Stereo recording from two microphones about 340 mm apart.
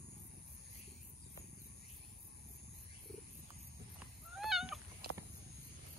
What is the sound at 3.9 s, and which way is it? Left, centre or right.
Cat, centre.